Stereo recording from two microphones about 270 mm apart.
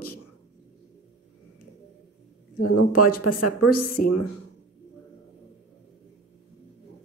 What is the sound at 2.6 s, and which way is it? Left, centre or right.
Speech, left.